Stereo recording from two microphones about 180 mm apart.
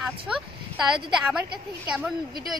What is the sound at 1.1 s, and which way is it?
Speech, 5° right (ahead or behind).